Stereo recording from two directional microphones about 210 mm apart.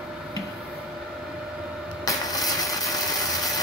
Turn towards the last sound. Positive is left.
turn(degrees=15)  # may be behind; listen again after turning